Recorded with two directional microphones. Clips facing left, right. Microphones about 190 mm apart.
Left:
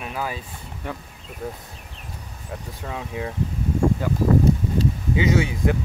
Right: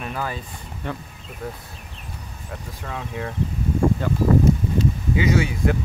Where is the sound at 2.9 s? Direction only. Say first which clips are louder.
Even; 15° left (ahead or behind).